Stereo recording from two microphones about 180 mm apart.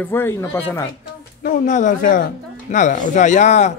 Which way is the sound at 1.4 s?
45° left (ahead or behind).